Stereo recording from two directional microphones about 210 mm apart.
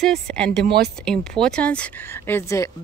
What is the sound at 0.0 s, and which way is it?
A woman's voice, 5° left (ahead or behind).